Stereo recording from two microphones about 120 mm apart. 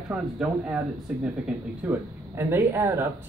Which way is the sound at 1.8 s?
20° right (ahead or behind).